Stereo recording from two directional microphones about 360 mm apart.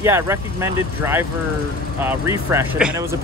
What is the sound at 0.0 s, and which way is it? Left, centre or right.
Speech, centre.